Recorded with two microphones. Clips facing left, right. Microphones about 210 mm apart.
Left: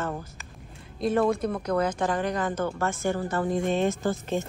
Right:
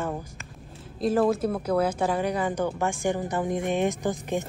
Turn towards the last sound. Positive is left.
turn(degrees=-15)  # may be behind; listen again after turning